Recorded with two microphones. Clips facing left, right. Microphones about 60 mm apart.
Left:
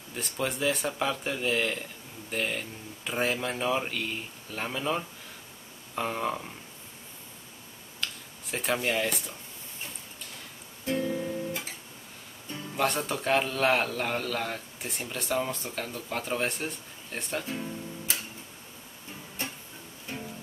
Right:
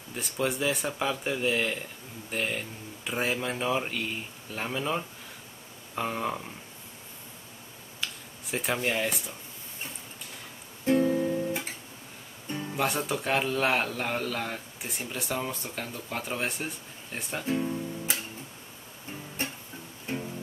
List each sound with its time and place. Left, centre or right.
0.1 s speech: centre
8.0 s a sound: centre
8.8 s speech: centre
10.9 s music: right
12.7 s speech: centre
17.5 s music: centre
20.1 s music: right